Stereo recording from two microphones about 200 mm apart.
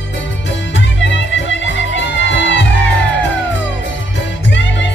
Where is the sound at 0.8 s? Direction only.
65° left (ahead or behind).